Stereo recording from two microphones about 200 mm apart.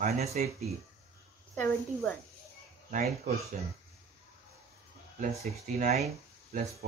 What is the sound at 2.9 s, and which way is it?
Speech, 40° right (ahead or behind).